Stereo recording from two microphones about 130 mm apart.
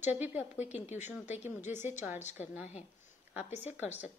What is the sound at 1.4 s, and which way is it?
Speech, 15° right (ahead or behind).